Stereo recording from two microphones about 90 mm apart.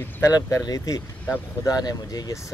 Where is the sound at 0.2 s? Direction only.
40° left (ahead or behind).